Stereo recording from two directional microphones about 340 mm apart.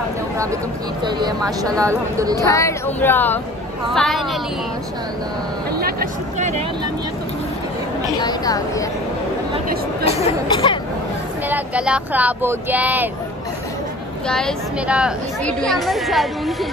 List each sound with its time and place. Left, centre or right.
1.0 s speech: centre
2.4 s a woman's voice: centre
5.8 s speech: right
8.2 s speech: centre
10.0 s speech: centre
11.4 s a woman's voice: centre
14.2 s a woman's voice: centre